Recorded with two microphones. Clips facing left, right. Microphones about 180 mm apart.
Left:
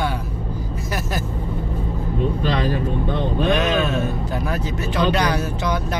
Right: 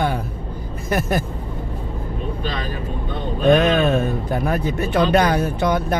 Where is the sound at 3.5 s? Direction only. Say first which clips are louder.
Right 7 dB; 55° right (ahead or behind).